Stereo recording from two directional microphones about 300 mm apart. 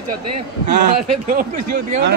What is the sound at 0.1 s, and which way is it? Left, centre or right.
A man's voice, right.